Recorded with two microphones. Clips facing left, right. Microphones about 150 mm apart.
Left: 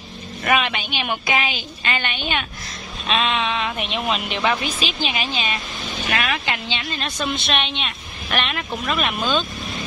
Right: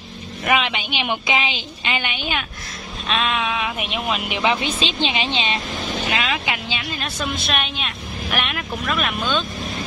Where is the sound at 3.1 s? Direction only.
Centre (ahead or behind).